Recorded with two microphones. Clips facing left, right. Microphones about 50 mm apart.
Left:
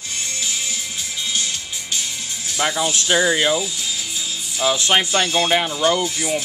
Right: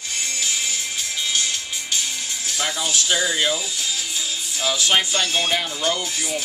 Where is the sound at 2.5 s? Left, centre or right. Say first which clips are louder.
Left 4 dB; left.